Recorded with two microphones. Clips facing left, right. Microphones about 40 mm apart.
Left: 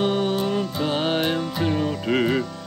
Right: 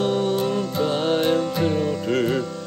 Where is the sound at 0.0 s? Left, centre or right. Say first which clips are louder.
Right 1 dB; left.